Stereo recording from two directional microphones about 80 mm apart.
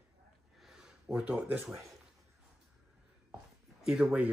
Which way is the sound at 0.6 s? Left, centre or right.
Centre.